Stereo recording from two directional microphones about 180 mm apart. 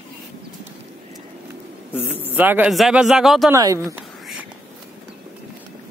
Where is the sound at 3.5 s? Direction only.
20° right (ahead or behind).